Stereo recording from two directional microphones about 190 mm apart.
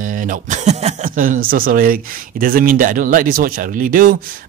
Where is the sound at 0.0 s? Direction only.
45° right (ahead or behind).